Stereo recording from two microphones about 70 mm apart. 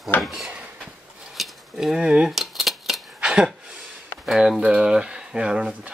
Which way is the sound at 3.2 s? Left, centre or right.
Centre.